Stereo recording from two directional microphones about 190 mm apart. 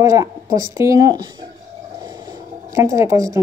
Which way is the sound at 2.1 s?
20° right (ahead or behind).